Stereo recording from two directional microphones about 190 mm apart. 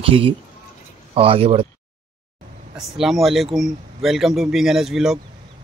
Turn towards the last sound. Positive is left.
turn(degrees=0)  # may be behind; listen again after turning